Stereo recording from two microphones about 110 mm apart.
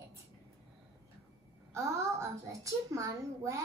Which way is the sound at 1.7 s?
25° right (ahead or behind).